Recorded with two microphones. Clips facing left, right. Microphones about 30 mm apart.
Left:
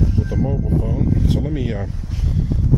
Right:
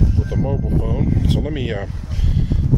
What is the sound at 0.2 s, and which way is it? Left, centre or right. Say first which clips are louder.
Speech: left 1 dB; centre.